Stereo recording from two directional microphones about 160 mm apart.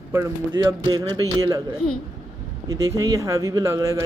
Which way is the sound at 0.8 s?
30° right (ahead or behind).